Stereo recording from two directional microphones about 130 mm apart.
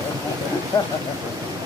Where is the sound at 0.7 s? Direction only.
30° left (ahead or behind).